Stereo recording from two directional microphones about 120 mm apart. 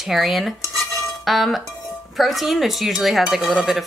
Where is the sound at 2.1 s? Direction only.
Centre (ahead or behind).